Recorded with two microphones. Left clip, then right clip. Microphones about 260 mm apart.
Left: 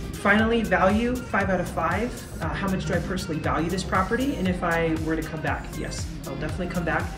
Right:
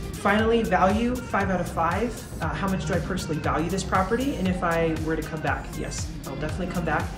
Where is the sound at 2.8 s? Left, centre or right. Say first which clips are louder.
Even; centre.